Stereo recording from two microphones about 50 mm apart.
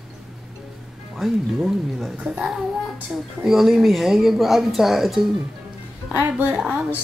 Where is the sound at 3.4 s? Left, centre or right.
Centre.